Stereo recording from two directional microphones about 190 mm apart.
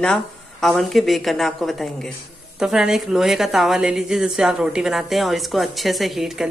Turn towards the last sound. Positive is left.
turn(degrees=0)  # may be behind; listen again after turning